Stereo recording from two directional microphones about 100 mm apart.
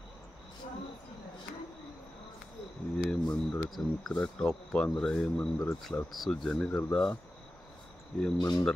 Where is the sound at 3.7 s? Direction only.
5° left (ahead or behind).